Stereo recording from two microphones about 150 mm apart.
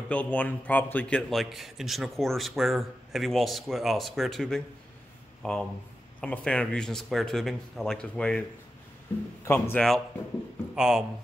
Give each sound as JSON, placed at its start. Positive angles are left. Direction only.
{"t": 0.1, "sound": "a man's voice", "side_deg": 10}
{"t": 10.7, "sound": "a man's voice", "side_deg": -5}